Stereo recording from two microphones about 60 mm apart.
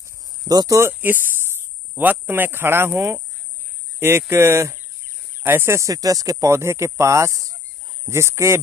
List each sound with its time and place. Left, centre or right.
0.2 s a sound: right
1.0 s a sound: right
2.0 s speech: right
4.3 s speech: right
5.9 s speech: right
6.5 s speech: right
8.1 s speech: right